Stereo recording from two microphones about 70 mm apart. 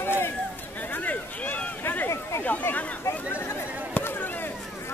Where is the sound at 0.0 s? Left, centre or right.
Left.